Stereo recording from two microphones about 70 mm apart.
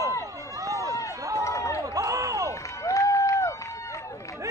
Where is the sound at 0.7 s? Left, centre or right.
Right.